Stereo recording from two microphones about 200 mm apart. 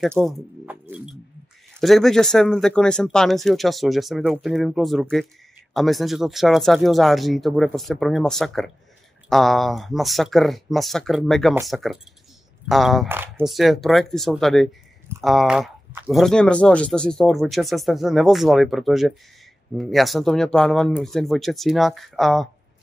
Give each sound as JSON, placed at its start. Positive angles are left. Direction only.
{"t": 0.0, "sound": "speech", "side_deg": 0}
{"t": 0.8, "sound": "music", "side_deg": -5}
{"t": 1.8, "sound": "speech", "side_deg": 0}